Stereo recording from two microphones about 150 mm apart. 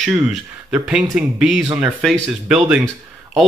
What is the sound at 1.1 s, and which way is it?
Speech, 5° right (ahead or behind).